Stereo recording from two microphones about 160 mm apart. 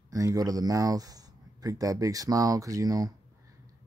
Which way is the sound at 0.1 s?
20° right (ahead or behind).